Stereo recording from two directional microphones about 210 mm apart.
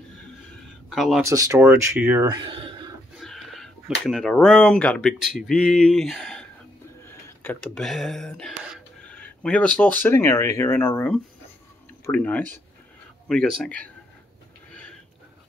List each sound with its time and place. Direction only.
0.8 s speech: centre (ahead or behind)
1.2 s speech: 15° right (ahead or behind)
2.2 s a sound: 20° right (ahead or behind)
3.2 s chicken: centre (ahead or behind)
4.0 s speech: 5° left (ahead or behind)